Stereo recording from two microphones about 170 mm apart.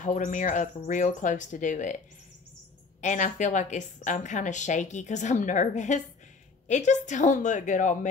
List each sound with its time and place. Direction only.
0.0 s a woman's voice: 45° left (ahead or behind)
3.0 s a woman's voice: 45° left (ahead or behind)